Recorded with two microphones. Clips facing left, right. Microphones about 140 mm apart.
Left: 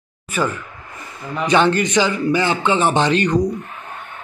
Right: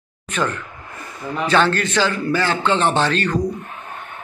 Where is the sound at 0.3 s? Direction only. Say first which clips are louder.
Left 1 dB; 10° left (ahead or behind).